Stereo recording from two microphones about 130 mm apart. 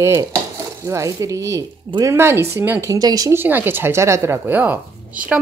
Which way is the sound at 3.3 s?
15° right (ahead or behind).